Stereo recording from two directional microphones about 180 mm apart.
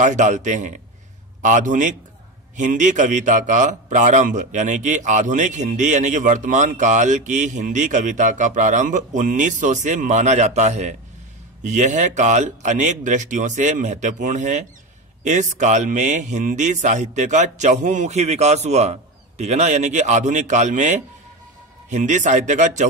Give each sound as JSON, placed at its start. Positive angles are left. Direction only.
{"t": 0.0, "sound": "a man's voice", "side_deg": -45}